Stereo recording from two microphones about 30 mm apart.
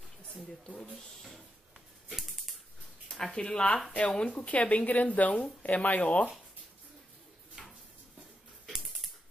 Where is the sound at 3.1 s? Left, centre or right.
Left.